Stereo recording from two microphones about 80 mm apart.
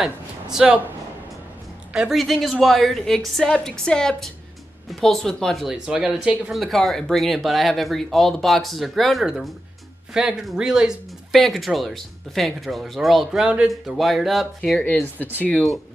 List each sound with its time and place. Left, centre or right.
0.0 s a sound: centre
2.0 s speech: centre
5.7 s speech: centre
6.5 s speech: centre
14.6 s speech: centre